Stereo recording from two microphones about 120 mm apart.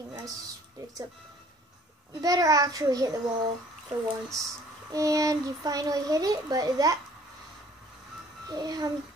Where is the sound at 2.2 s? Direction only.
30° right (ahead or behind).